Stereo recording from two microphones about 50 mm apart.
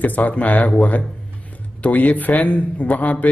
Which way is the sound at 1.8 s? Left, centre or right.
Left.